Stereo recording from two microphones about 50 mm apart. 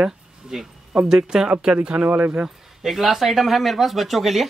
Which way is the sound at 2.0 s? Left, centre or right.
Right.